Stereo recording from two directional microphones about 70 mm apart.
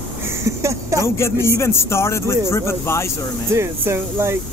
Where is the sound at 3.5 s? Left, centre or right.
Right.